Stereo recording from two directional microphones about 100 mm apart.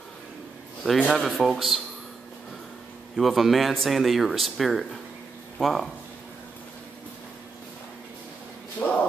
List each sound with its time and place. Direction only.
1.0 s speech: centre (ahead or behind)
3.2 s speech: centre (ahead or behind)
8.8 s a sound: 20° left (ahead or behind)